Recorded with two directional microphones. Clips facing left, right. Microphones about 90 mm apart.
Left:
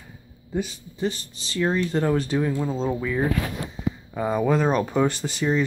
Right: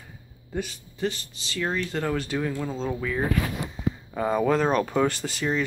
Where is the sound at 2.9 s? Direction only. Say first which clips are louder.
Left 3 dB; 15° left (ahead or behind).